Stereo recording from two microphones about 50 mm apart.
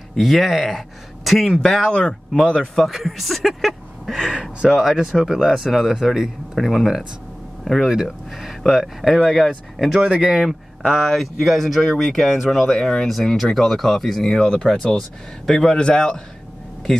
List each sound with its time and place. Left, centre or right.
0.1 s speech: centre
1.9 s speech: left
2.7 s speech: centre
4.3 s speech: centre
5.1 s speech: centre
6.5 s speech: centre
9.9 s speech: right
11.0 s speech: centre